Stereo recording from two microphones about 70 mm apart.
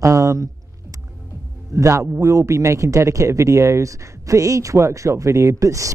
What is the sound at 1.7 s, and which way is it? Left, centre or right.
Speech, right.